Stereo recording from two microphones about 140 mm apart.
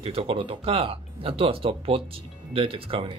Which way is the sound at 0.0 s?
45° right (ahead or behind).